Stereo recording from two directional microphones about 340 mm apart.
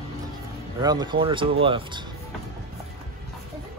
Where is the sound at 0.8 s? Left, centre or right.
Centre.